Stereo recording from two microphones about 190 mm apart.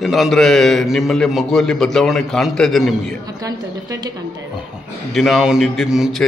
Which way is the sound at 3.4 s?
20° right (ahead or behind).